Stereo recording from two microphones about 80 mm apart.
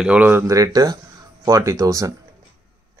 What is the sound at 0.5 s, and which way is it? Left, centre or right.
Speech, right.